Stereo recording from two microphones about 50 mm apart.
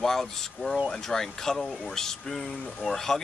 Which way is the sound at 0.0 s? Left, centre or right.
Centre.